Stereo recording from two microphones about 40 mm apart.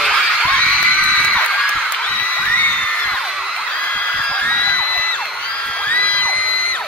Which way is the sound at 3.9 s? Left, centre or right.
Left.